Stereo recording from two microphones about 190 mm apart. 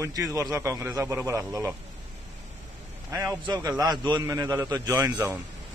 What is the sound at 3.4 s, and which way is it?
A man's voice, 20° right (ahead or behind).